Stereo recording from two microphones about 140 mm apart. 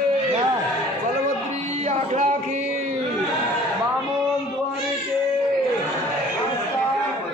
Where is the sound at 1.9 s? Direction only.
55° right (ahead or behind).